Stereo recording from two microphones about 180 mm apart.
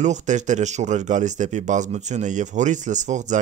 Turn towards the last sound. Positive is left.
turn(degrees=-40)  # may be behind; listen again after turning